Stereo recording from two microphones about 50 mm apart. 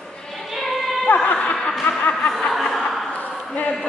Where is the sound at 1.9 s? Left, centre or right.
Left.